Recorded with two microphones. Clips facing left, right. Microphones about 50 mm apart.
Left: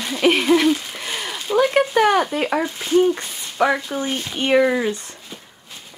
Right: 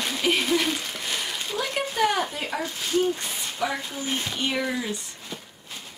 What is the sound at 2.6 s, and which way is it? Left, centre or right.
Speech, left.